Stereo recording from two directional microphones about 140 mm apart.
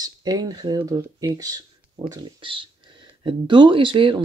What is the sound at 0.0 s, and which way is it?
Speech, 30° right (ahead or behind).